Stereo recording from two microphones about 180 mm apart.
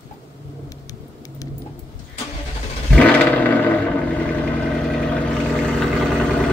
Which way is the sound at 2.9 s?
10° left (ahead or behind).